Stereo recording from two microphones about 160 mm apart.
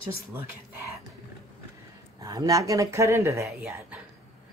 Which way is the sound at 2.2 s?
20° right (ahead or behind).